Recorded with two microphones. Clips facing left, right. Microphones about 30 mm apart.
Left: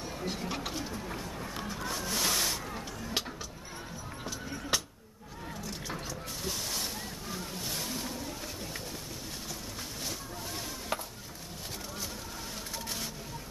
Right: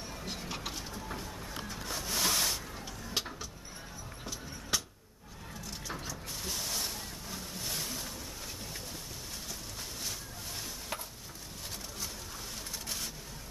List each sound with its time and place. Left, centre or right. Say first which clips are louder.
0.3 s rub: left 3 dB; centre
2.7 s vehicle: left 2 dB; centre
4.2 s music: left 5 dB; centre
5.7 s vehicle: even; centre
10.9 s a sound: left 5 dB; centre